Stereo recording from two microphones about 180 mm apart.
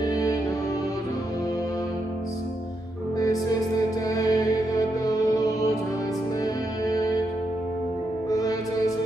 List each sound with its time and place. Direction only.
0.0 s music: 20° left (ahead or behind)
4.1 s music: 20° left (ahead or behind)
8.3 s music: 20° left (ahead or behind)